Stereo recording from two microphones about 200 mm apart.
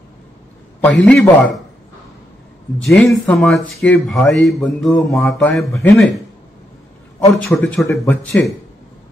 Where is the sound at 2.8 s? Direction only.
Centre (ahead or behind).